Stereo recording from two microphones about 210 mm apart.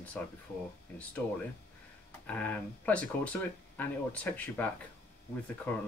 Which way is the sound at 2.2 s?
5° left (ahead or behind).